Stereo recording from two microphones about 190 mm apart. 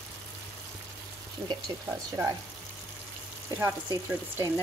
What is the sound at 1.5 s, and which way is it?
Speech, 15° right (ahead or behind).